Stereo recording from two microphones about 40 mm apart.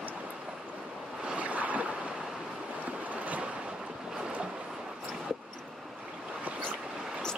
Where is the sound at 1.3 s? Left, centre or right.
Right.